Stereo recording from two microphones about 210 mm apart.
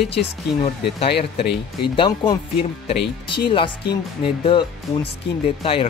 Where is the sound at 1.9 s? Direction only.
20° left (ahead or behind).